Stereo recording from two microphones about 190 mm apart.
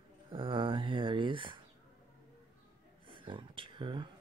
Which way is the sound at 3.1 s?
25° right (ahead or behind).